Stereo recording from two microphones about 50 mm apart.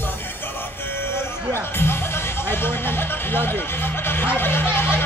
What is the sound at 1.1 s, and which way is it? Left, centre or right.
Music, left.